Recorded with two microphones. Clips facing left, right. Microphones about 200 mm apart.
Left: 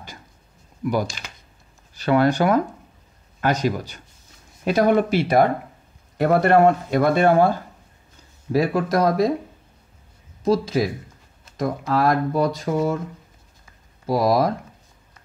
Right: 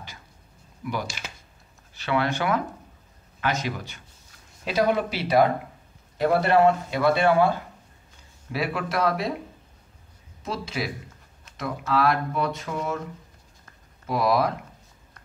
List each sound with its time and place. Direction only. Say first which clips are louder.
2.0 s speech: left 7 dB; 40° left (ahead or behind)
10.4 s speech: left 11 dB; 40° left (ahead or behind)
11.4 s a sound: left 8 dB; 40° left (ahead or behind)
11.9 s speech: left 3 dB; 40° left (ahead or behind)
14.0 s speech: left 4 dB; 40° left (ahead or behind)